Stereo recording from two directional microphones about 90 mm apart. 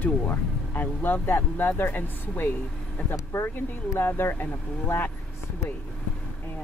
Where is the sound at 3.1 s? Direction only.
35° left (ahead or behind).